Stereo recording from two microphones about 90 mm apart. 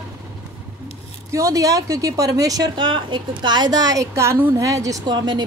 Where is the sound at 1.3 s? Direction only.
40° right (ahead or behind).